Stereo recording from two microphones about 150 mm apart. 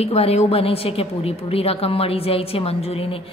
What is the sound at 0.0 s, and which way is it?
A woman's voice, 45° left (ahead or behind).